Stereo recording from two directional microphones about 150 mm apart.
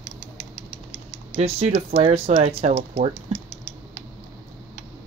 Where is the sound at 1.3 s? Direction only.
45° right (ahead or behind).